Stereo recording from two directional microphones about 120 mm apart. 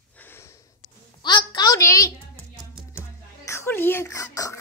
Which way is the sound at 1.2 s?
40° left (ahead or behind).